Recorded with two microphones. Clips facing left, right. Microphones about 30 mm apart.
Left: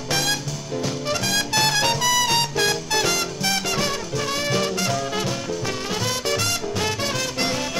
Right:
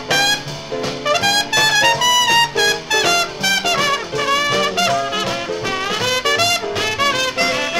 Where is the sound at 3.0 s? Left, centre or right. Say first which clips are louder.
Right 7 dB; right.